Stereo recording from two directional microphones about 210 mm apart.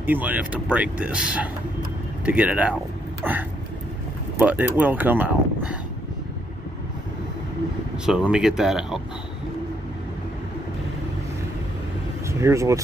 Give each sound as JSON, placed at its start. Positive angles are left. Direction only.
{"t": 0.0, "sound": "speech", "side_deg": -10}
{"t": 8.0, "sound": "speech", "side_deg": -5}
{"t": 12.3, "sound": "speech", "side_deg": -15}